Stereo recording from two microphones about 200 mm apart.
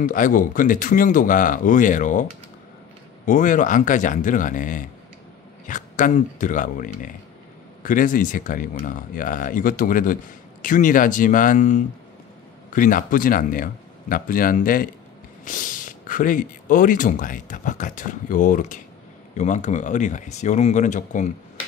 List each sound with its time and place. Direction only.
0.0 s speech: 40° left (ahead or behind)
3.3 s speech: 40° left (ahead or behind)